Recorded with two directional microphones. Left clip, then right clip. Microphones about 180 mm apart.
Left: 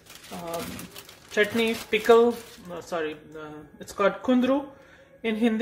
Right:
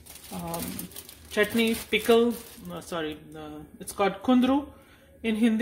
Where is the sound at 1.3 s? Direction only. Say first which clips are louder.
Left 1 dB; 35° right (ahead or behind).